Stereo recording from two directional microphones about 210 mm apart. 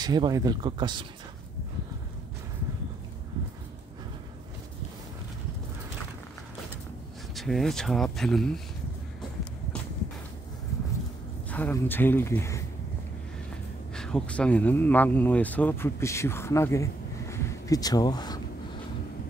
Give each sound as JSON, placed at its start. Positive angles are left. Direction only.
{"t": 0.0, "sound": "speech", "side_deg": -20}
{"t": 7.3, "sound": "speech", "side_deg": 0}
{"t": 11.5, "sound": "speech", "side_deg": 10}
{"t": 13.9, "sound": "speech", "side_deg": 5}